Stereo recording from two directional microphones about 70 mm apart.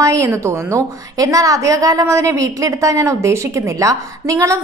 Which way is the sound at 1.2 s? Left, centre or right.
Right.